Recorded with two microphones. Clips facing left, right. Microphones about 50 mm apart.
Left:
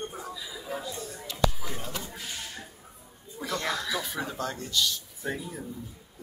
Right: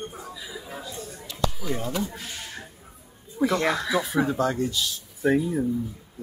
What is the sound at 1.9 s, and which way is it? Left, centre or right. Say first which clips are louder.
Speech: right 9 dB; right.